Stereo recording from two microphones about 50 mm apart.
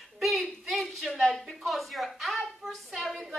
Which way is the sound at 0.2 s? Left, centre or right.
Centre.